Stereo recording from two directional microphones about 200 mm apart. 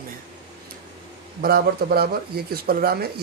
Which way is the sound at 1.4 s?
50° right (ahead or behind).